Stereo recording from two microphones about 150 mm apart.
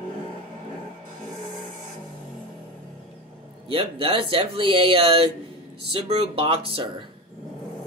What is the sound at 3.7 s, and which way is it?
Speech, 35° right (ahead or behind).